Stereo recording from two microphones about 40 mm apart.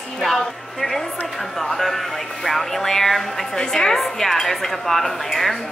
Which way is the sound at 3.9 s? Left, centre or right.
Centre.